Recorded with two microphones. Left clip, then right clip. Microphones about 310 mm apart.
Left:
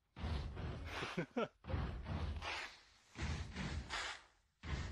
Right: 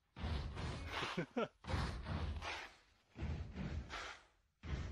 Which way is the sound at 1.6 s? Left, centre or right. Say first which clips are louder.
Right 3 dB; right.